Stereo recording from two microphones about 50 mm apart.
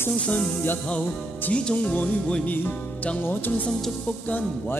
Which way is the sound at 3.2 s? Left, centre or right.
Left.